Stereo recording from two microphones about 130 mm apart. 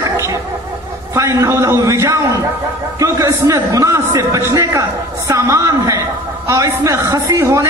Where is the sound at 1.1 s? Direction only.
25° right (ahead or behind).